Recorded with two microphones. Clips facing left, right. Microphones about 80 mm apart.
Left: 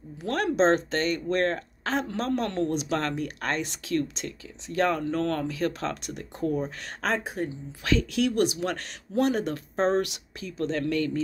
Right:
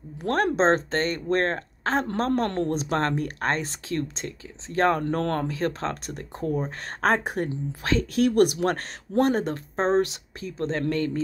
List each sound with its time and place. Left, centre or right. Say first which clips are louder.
0.2 s speech: right 2 dB; right
5.0 s speech: right 1 dB; right
5.5 s speech: right 1 dB; right
7.1 s speech: right 4 dB; right
7.8 s speech: right 2 dB; right